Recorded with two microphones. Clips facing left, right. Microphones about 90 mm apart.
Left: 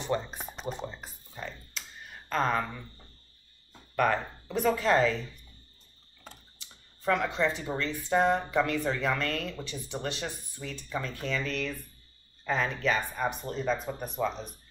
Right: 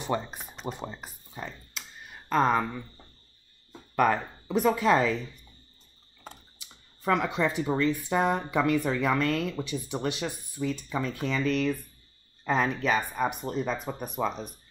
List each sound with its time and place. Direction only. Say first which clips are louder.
0.0 s speech: right 1 dB; 15° right (ahead or behind)
0.8 s computer keyboard: right 1 dB; 15° right (ahead or behind)
3.9 s speech: right 2 dB; 15° right (ahead or behind)
7.1 s speech: right 1 dB; 15° right (ahead or behind)